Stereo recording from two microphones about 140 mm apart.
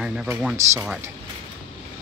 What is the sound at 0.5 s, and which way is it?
Speech, 20° right (ahead or behind).